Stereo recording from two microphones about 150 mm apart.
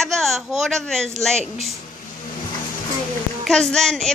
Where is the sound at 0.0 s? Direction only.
Centre (ahead or behind).